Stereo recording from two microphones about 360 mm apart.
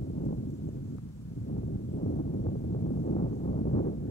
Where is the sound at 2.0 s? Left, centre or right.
Left.